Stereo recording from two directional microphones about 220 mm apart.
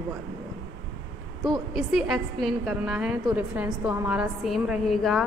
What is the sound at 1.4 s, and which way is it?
A woman's voice, centre (ahead or behind).